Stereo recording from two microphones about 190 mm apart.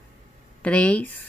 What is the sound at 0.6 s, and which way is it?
Speech, 5° left (ahead or behind).